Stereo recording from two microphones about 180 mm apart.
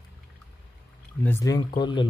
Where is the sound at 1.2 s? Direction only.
15° left (ahead or behind).